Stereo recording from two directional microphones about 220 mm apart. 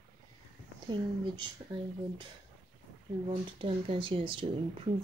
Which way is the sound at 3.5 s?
25° right (ahead or behind).